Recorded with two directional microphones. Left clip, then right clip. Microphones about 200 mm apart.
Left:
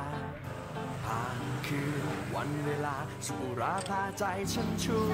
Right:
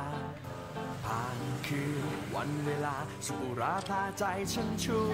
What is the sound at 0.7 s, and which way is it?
Speech, centre (ahead or behind).